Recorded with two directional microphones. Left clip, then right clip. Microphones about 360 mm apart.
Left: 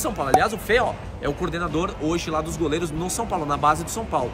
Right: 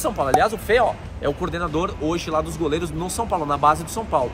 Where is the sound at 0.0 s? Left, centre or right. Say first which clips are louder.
Right 1 dB; centre.